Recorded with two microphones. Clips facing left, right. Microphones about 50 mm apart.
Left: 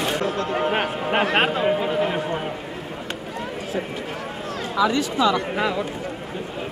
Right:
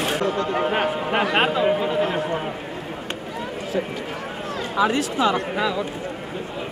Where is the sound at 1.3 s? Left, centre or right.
Centre.